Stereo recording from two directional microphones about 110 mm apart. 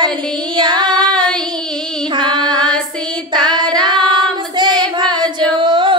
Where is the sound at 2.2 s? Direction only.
45° right (ahead or behind).